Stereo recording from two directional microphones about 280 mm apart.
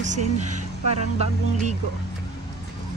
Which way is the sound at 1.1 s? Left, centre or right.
Right.